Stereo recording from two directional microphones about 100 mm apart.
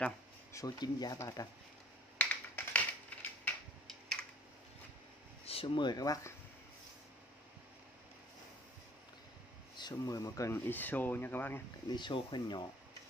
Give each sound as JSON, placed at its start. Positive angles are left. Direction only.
{"t": 0.5, "sound": "speech", "side_deg": 35}
{"t": 2.1, "sound": "typing", "side_deg": 15}
{"t": 3.8, "sound": "computer keyboard", "side_deg": 5}
{"t": 5.4, "sound": "a sound", "side_deg": 75}
{"t": 5.8, "sound": "speech", "side_deg": 45}
{"t": 9.8, "sound": "speech", "side_deg": 40}
{"t": 10.5, "sound": "speech", "side_deg": 20}
{"t": 11.9, "sound": "speech", "side_deg": 50}